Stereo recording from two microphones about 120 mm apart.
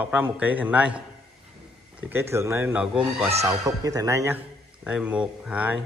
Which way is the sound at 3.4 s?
30° right (ahead or behind).